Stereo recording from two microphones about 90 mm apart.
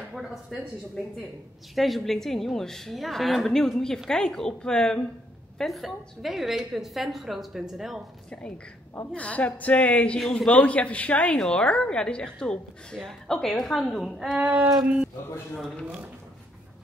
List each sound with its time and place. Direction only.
0.1 s speech: centre (ahead or behind)
1.8 s a woman's voice: centre (ahead or behind)
8.3 s a woman's voice: 10° left (ahead or behind); by 15.0 s 5° right (ahead or behind)
15.5 s a woman's voice: 5° left (ahead or behind)